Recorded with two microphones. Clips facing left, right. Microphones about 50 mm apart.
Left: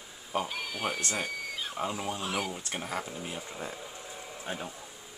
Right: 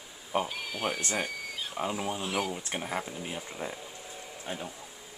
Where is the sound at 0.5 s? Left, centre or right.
Centre.